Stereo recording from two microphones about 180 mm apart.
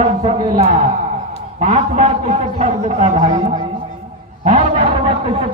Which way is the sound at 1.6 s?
40° right (ahead or behind).